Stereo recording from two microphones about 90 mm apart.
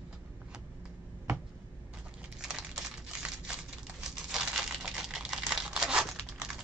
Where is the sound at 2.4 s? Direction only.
10° right (ahead or behind).